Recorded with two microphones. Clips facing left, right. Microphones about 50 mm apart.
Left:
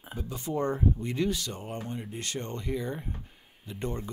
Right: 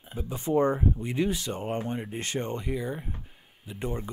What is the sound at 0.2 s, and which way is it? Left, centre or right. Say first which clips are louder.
Speech: right 6 dB; right.